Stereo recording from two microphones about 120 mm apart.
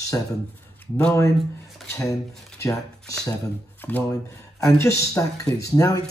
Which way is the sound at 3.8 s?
15° left (ahead or behind).